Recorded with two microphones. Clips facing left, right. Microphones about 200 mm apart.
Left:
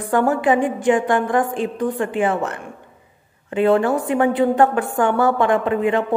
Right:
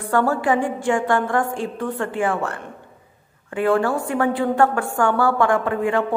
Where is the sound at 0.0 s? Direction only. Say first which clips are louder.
Left 2 dB; 20° left (ahead or behind).